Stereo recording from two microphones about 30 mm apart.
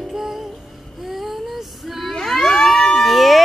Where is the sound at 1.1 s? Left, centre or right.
Centre.